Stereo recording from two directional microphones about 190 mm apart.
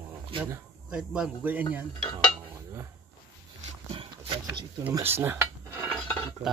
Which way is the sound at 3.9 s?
25° right (ahead or behind).